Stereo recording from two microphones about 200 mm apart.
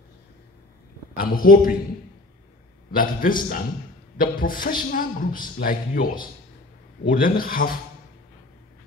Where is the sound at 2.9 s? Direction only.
45° left (ahead or behind).